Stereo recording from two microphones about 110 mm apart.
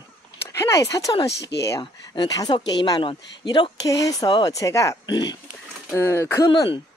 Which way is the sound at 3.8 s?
30° left (ahead or behind).